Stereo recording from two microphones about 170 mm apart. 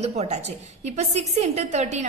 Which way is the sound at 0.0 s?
40° right (ahead or behind).